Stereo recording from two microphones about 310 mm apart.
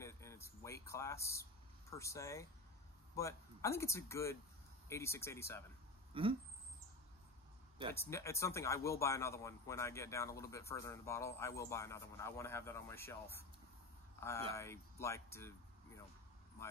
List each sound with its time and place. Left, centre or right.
0.0 s a sound: centre
3.2 s speech: centre
6.1 s rodents: centre
7.9 s speech: centre
14.5 s speech: centre